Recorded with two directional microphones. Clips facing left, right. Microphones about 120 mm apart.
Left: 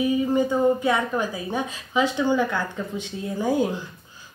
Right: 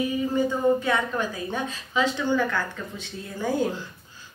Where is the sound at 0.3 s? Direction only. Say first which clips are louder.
Even; 15° left (ahead or behind).